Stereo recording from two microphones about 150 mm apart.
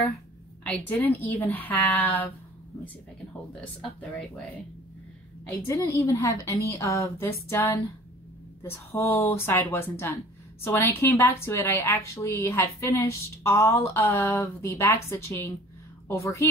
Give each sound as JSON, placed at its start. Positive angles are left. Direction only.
{"t": 0.7, "sound": "a woman's voice", "side_deg": 10}
{"t": 5.4, "sound": "a woman's voice", "side_deg": 15}